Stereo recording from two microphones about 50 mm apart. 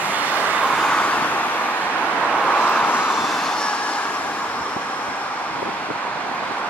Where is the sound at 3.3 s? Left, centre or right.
Centre.